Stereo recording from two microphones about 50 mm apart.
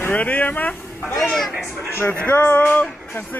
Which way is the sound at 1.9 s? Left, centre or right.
Left.